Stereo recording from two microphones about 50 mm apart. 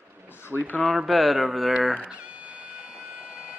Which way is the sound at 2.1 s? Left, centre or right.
Right.